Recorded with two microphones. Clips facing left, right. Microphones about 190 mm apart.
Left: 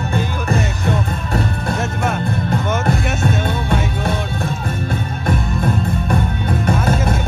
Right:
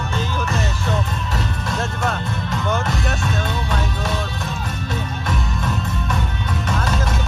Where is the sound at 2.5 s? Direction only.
55° left (ahead or behind).